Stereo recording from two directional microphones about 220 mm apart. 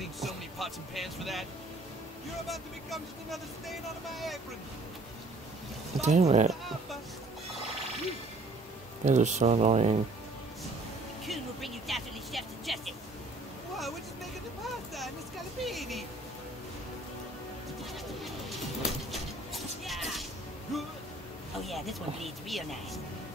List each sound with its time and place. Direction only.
0.0 s vehicle: centre (ahead or behind)
2.4 s speech: centre (ahead or behind)
5.9 s speech: 30° right (ahead or behind)
9.0 s speech: 30° right (ahead or behind)
11.2 s speech: centre (ahead or behind)
13.7 s vehicle: centre (ahead or behind)
15.6 s speech: centre (ahead or behind)
18.2 s pigeon: centre (ahead or behind)
20.7 s speech: centre (ahead or behind)